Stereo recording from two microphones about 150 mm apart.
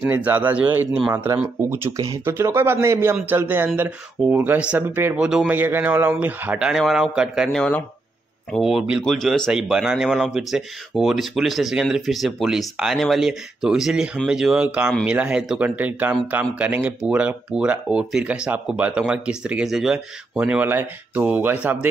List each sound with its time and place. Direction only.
0.0 s speech: 15° right (ahead or behind)